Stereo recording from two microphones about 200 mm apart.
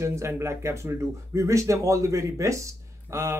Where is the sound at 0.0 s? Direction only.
15° right (ahead or behind).